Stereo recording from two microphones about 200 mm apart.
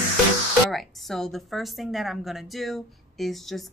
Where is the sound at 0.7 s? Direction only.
Centre (ahead or behind).